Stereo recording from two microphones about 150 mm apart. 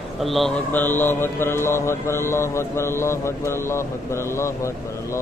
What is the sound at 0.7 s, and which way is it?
Speech, 15° left (ahead or behind).